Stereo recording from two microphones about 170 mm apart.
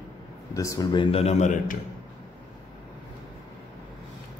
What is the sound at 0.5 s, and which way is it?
A man's voice, 20° left (ahead or behind).